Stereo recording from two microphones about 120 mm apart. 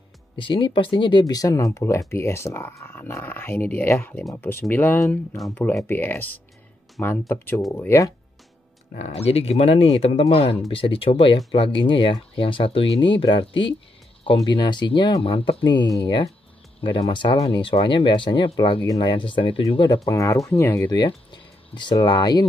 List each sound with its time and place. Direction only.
0.4 s speech: 45° left (ahead or behind); by 7.6 s 20° left (ahead or behind)
8.9 s speech: 65° left (ahead or behind)
15.6 s speech: 40° left (ahead or behind)
20.1 s speech: 25° left (ahead or behind)
20.9 s speech: 40° left (ahead or behind)